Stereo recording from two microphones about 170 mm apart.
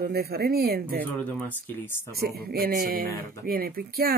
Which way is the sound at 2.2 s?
65° right (ahead or behind).